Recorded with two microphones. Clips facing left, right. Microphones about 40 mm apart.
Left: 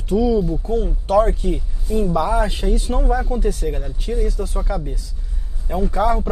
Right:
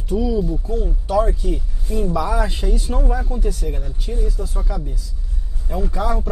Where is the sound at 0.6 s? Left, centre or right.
Left.